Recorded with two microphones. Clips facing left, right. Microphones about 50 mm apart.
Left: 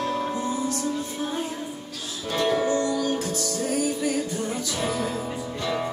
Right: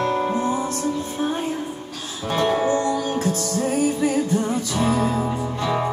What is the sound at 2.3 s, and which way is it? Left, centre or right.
Music, right.